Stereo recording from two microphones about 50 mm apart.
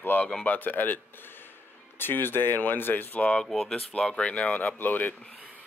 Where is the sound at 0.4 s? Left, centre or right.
Left.